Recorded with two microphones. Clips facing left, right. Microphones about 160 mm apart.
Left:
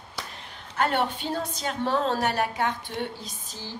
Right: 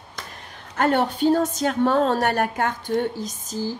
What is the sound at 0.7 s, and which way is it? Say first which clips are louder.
A woman's voice: right 5 dB; 45° right (ahead or behind).